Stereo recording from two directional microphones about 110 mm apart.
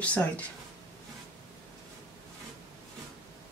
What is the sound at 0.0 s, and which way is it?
Speech, 15° left (ahead or behind).